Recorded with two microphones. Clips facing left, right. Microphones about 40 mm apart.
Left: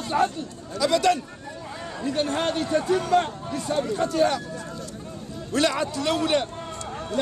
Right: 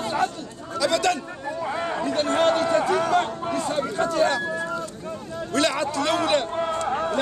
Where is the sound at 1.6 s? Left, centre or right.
Right.